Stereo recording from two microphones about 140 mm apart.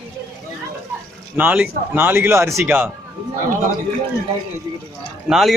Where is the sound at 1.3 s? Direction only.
10° right (ahead or behind).